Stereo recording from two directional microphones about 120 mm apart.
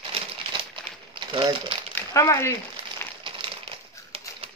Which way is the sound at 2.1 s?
25° left (ahead or behind).